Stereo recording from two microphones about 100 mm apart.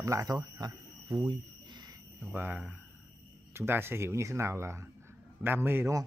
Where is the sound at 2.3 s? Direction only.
20° right (ahead or behind).